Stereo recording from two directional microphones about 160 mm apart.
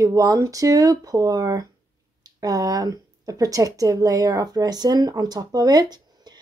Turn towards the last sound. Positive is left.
turn(degrees=-25)  # may be behind; listen again after turning